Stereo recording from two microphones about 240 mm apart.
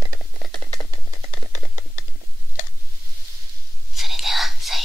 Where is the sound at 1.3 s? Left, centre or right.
Left.